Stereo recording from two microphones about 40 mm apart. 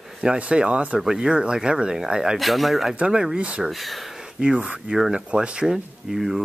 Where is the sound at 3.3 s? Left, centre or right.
Right.